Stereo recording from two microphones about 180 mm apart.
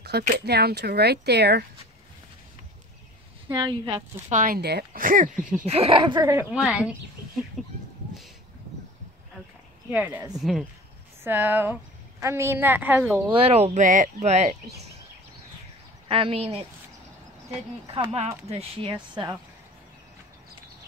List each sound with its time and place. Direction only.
0.1 s speech: 65° right (ahead or behind)
3.5 s speech: 25° right (ahead or behind)
4.3 s speech: 50° right (ahead or behind)
5.4 s speech: 5° right (ahead or behind)
5.7 s speech: 35° right (ahead or behind)
6.2 s speech: 10° right (ahead or behind)
9.9 s a woman's voice: 10° right (ahead or behind)
13.3 s speech: 35° right (ahead or behind)
16.1 s speech: 30° right (ahead or behind)
17.9 s speech: 35° right (ahead or behind)